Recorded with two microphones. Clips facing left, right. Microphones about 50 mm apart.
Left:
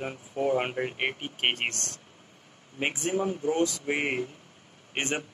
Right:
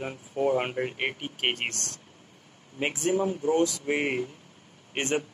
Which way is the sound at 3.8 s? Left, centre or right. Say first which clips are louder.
Right 1 dB; centre.